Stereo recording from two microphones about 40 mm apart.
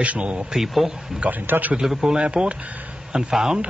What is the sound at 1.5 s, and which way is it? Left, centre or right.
Speech, right.